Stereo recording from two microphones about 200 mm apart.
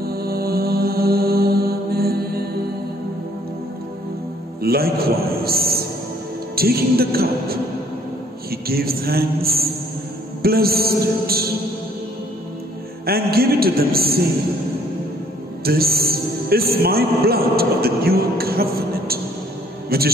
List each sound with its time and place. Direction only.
0.0 s mantra: 50° right (ahead or behind)
4.6 s music: 50° right (ahead or behind)
8.5 s a man's voice: 50° right (ahead or behind)
13.0 s a man's voice: 50° right (ahead or behind)
15.6 s a man's voice: 50° right (ahead or behind)